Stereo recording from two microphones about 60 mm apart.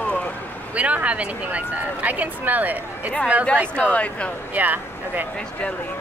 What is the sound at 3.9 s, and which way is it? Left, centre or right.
Speech, left.